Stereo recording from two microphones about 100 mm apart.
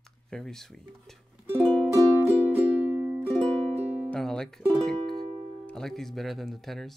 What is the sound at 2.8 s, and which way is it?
Music, 20° right (ahead or behind).